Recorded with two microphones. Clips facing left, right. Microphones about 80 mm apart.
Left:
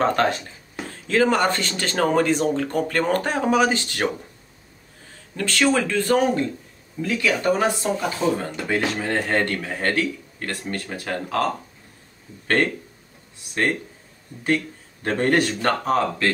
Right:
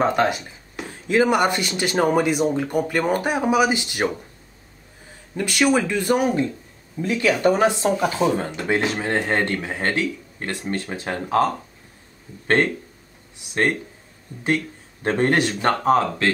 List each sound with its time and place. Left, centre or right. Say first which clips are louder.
0.0 s speech: right 1 dB; centre
5.3 s speech: right 1 dB; centre
7.2 s speech: right 3 dB; right
15.0 s speech: right 1 dB; right